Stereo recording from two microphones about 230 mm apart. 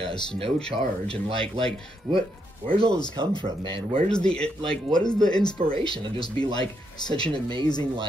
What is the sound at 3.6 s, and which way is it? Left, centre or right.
Speech, right.